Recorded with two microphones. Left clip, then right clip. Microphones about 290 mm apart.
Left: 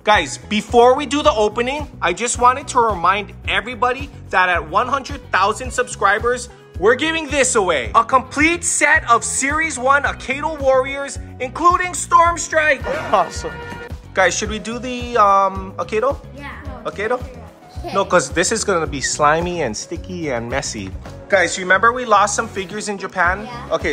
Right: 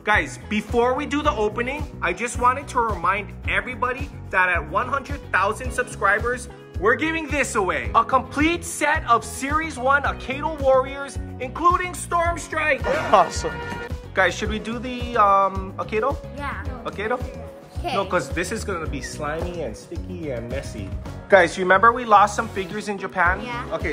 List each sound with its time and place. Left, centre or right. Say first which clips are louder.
0.0 s speech: left 6 dB; centre; by 20.8 s left
21.3 s speech: left 1 dB; centre